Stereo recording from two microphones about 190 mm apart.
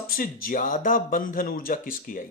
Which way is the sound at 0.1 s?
45° left (ahead or behind).